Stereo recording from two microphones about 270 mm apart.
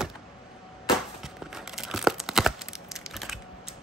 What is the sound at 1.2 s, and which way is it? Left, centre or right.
Tearing, centre.